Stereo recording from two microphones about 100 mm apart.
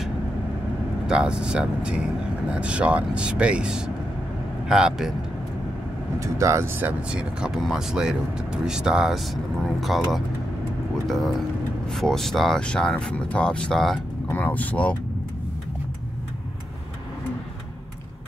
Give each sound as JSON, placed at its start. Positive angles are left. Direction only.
{"t": 1.0, "sound": "speech", "side_deg": -10}
{"t": 6.1, "sound": "speech", "side_deg": -30}
{"t": 11.1, "sound": "speech", "side_deg": 0}
{"t": 14.2, "sound": "speech", "side_deg": 20}